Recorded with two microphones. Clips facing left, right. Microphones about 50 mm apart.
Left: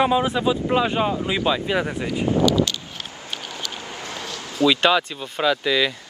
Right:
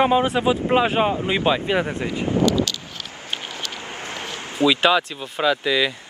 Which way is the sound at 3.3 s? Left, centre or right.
Right.